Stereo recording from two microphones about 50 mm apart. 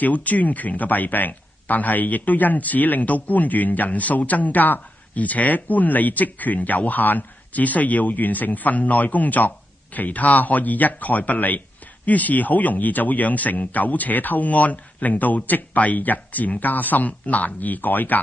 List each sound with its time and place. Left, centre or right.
0.0 s speech: left